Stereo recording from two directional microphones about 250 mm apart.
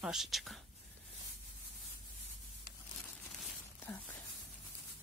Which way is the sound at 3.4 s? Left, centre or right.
Centre.